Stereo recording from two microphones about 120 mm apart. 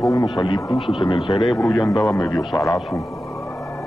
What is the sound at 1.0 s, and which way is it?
Speech, 40° left (ahead or behind).